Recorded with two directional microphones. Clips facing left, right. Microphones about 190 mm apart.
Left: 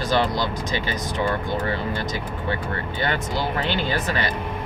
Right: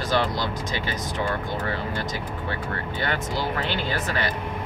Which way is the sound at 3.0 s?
25° left (ahead or behind).